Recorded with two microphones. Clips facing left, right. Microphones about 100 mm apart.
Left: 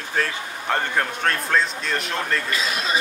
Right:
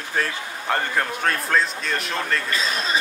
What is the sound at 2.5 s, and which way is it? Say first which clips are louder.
Speech: even; 35° right (ahead or behind).